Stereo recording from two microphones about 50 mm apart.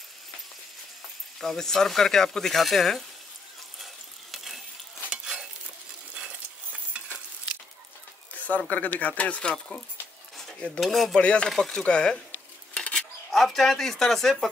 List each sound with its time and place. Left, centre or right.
1.4 s speech: centre
3.8 s coin: centre
5.1 s stir: centre
8.4 s speech: left
10.8 s speech: centre
11.1 s speech: left
11.5 s speech: centre
11.8 s speech: centre
13.3 s speech: centre